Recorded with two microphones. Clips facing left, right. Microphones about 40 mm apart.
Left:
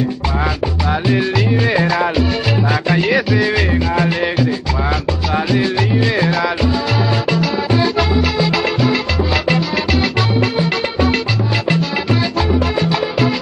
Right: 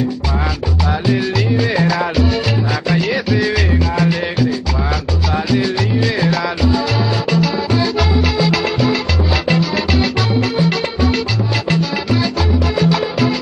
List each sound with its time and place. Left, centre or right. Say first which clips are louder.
1.0 s music: left 1 dB; centre
3.1 s music: left 2 dB; centre
3.9 s music: left 1 dB; left
7.2 s music: right 1 dB; centre
7.7 s music: left 3 dB; left; by 10.0 s centre
11.7 s music: right 1 dB; left
12.7 s music: right 1 dB; centre